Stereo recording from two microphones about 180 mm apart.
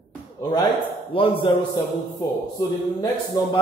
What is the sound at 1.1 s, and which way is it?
Speech, 30° left (ahead or behind).